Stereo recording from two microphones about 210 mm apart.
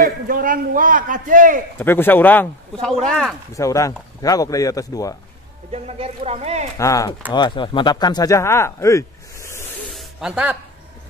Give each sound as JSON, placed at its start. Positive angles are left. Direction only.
{"t": 0.0, "sound": "a man's voice", "side_deg": -40}
{"t": 1.8, "sound": "speech", "side_deg": 10}
{"t": 3.5, "sound": "speech", "side_deg": 15}
{"t": 5.7, "sound": "a man's voice", "side_deg": -30}
{"t": 6.8, "sound": "speech", "side_deg": 15}
{"t": 9.8, "sound": "snake", "side_deg": 0}